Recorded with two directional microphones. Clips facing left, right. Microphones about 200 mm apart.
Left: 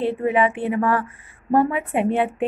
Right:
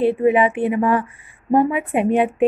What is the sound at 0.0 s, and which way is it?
A woman's voice, 15° right (ahead or behind).